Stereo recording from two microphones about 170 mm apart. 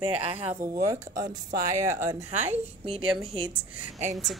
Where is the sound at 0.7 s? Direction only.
20° right (ahead or behind).